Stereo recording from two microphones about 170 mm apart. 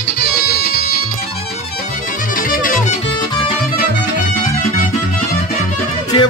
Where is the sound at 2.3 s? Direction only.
55° left (ahead or behind).